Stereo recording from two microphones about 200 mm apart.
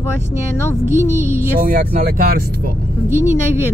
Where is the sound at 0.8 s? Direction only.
10° right (ahead or behind).